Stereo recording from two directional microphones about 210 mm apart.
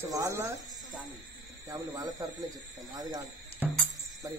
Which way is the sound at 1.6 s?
20° right (ahead or behind).